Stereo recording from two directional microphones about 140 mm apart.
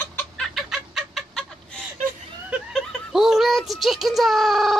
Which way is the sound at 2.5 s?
Centre (ahead or behind).